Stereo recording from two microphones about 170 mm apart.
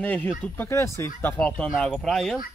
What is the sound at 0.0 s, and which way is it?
Speech, 10° left (ahead or behind).